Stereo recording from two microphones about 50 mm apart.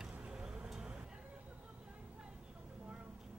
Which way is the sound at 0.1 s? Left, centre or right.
Right.